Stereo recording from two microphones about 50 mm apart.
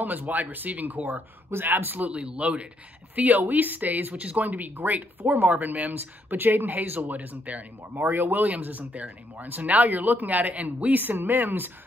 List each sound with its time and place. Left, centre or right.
0.0 s speech: right
1.5 s speech: right
2.0 s speech: right
3.2 s speech: right
8.1 s speech: right